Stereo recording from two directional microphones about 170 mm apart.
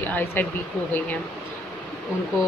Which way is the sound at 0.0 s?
10° left (ahead or behind).